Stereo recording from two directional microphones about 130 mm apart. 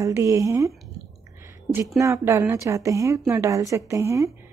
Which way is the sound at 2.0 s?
20° right (ahead or behind).